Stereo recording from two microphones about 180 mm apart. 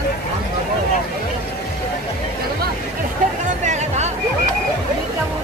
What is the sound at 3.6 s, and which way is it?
Music, 40° right (ahead or behind).